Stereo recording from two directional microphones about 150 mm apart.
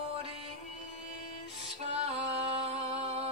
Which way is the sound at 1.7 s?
45° right (ahead or behind).